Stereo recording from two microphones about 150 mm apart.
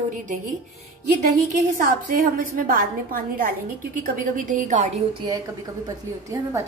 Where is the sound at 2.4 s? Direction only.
70° right (ahead or behind).